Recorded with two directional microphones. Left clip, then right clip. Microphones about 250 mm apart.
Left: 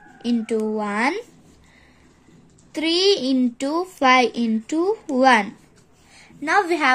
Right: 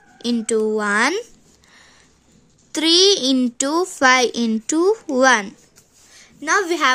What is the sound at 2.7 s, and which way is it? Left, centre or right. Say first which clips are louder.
A child's voice: right 4 dB; right.